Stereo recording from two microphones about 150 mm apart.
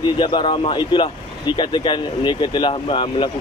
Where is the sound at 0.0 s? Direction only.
30° left (ahead or behind).